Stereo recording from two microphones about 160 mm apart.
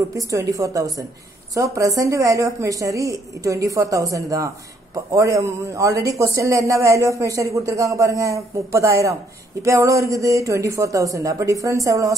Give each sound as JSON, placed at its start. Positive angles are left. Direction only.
{"t": 0.1, "sound": "speech", "side_deg": -20}